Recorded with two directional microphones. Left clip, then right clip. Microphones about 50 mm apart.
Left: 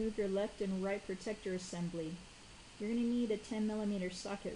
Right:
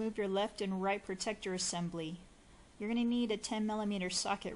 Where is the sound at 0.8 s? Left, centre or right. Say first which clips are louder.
Right 7 dB; right.